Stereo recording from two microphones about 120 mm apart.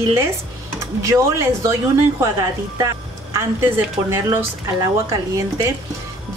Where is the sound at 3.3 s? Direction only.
20° right (ahead or behind).